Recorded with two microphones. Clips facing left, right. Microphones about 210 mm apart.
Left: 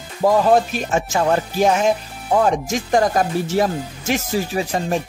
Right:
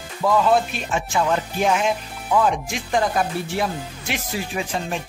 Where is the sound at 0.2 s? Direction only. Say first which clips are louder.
Left 4 dB; 40° left (ahead or behind).